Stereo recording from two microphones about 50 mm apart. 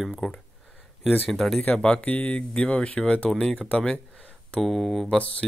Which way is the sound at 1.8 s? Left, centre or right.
Left.